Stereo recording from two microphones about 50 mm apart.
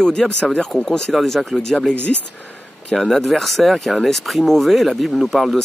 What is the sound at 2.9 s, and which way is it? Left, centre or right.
Speech, centre.